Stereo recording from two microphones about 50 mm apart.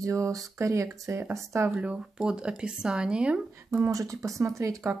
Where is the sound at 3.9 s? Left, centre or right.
Right.